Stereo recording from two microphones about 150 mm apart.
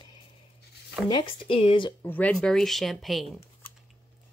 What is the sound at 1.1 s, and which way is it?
Speech, 35° left (ahead or behind).